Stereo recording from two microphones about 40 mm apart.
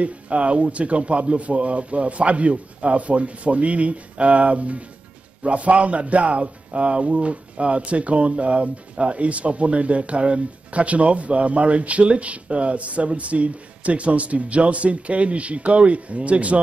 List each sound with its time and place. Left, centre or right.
0.0 s speech: right